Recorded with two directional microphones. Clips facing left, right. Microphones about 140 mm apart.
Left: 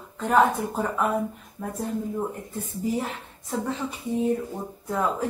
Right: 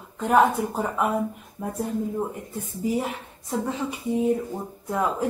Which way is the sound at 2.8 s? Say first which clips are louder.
Right 2 dB; 15° right (ahead or behind).